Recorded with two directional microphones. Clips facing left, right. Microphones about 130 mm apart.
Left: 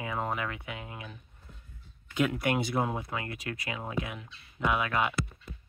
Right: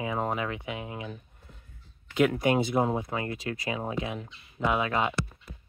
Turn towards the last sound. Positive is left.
turn(degrees=-25)  # may be behind; listen again after turning